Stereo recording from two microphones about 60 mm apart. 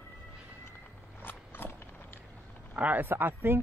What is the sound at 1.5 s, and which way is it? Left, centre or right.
Clip-clop, left.